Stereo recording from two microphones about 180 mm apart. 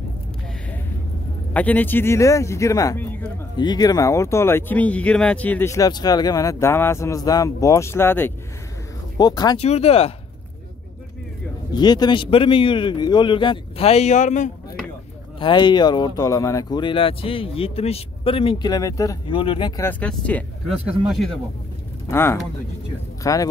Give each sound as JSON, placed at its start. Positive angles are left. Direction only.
{"t": 1.5, "sound": "speech", "side_deg": 10}
{"t": 9.6, "sound": "speech", "side_deg": 35}
{"t": 11.7, "sound": "speech", "side_deg": 25}
{"t": 15.3, "sound": "speech", "side_deg": 25}
{"t": 19.8, "sound": "speech", "side_deg": 10}
{"t": 22.1, "sound": "speech", "side_deg": 15}